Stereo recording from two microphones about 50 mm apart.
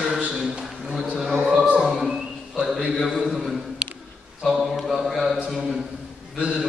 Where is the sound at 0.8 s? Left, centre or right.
Right.